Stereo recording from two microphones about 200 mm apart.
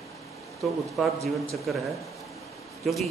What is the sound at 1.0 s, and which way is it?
Speech, centre (ahead or behind).